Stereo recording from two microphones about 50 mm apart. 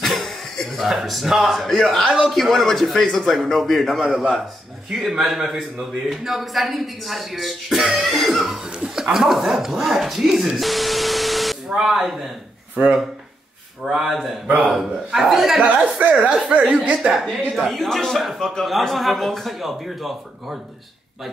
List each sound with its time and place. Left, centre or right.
0.0 s cough: centre
0.8 s a man's voice: centre
4.8 s a man's voice: centre
8.6 s chuckle: centre
9.1 s a man's voice: centre
12.8 s speech: right
13.8 s a man's voice: centre
15.5 s speech: right
17.1 s a man's voice: centre